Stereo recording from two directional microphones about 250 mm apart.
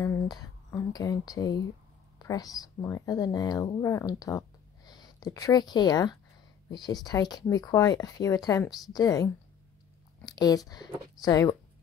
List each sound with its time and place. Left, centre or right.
0.0 s speech: centre